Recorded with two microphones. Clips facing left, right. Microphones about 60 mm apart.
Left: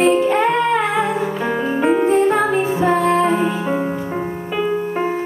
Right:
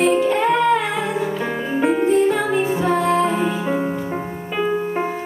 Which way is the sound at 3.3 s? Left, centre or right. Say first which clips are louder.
Left 2 dB; centre.